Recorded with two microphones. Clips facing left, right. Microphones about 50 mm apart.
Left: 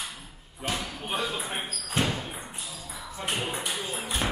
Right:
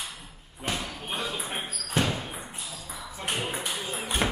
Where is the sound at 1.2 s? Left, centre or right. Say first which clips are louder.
Left 1 dB; centre.